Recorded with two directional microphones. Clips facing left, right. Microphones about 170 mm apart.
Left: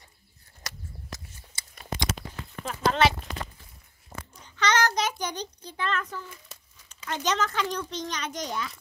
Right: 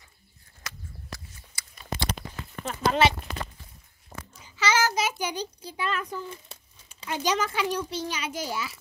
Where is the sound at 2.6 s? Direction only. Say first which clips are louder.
Right 1 dB; 5° right (ahead or behind).